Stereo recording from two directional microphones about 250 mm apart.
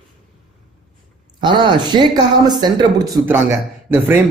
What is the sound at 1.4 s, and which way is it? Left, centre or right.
A man's voice, centre.